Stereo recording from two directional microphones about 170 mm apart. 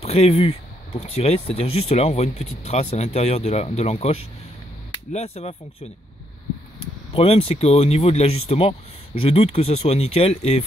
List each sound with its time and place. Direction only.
0.0 s speech: 35° left (ahead or behind)
7.2 s speech: 35° left (ahead or behind)